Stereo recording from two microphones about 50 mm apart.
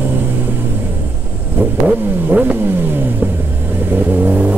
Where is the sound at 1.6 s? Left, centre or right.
Right.